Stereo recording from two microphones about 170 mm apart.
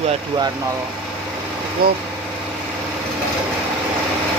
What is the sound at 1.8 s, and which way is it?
Speech, 65° right (ahead or behind).